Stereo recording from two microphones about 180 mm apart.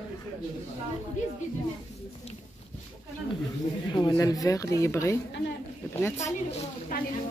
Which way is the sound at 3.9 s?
20° left (ahead or behind).